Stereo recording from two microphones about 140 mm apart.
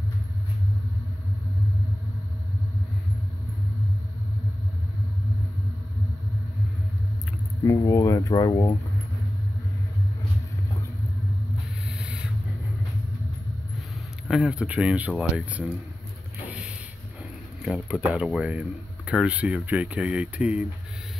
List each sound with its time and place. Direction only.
7.6 s speech: 20° left (ahead or behind)
14.2 s speech: 5° right (ahead or behind)
16.4 s vehicle: 10° right (ahead or behind)
17.6 s speech: 5° right (ahead or behind)